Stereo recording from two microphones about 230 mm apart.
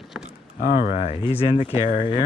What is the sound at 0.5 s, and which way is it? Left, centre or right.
Speech, left.